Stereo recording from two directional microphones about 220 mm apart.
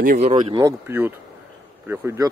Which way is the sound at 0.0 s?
35° right (ahead or behind).